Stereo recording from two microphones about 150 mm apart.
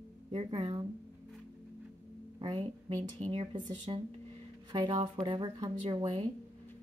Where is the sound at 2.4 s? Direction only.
35° right (ahead or behind).